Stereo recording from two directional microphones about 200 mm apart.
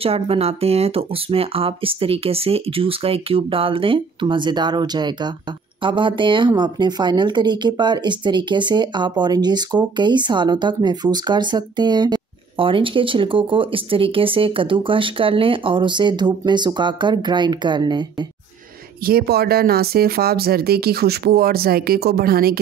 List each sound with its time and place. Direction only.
0.0 s speech: 30° right (ahead or behind)
19.0 s speech: 50° right (ahead or behind)